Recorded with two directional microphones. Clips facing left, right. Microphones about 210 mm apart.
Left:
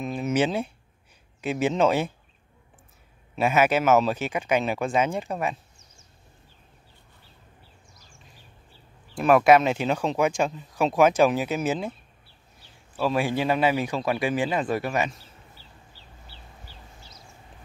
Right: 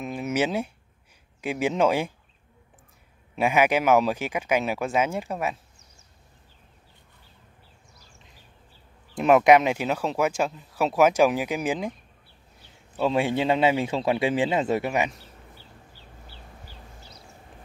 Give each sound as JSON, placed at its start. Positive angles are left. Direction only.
{"t": 0.0, "sound": "speech", "side_deg": -10}
{"t": 3.3, "sound": "speech", "side_deg": -15}
{"t": 9.1, "sound": "speech", "side_deg": -20}
{"t": 12.9, "sound": "a man's voice", "side_deg": -25}